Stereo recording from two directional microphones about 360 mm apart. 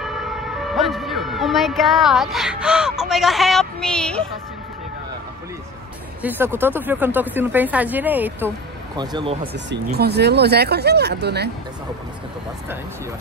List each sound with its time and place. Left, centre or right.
0.0 s vehicle: centre
6.2 s speech: centre
9.5 s speech: right